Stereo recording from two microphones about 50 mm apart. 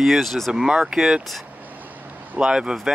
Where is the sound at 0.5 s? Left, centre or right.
Centre.